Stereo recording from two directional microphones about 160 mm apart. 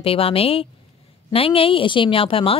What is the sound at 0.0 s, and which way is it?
A woman's voice, 35° left (ahead or behind).